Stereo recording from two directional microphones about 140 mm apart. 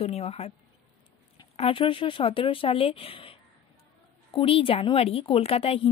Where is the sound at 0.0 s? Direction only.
45° left (ahead or behind).